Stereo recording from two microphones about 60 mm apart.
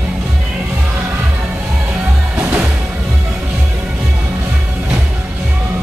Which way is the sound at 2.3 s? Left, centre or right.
Right.